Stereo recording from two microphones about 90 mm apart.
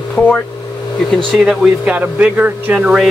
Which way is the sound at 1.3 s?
10° right (ahead or behind).